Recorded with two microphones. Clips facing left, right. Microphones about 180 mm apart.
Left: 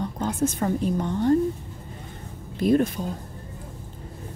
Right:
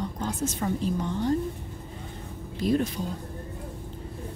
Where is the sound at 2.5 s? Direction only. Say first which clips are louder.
Left 5 dB; 55° left (ahead or behind).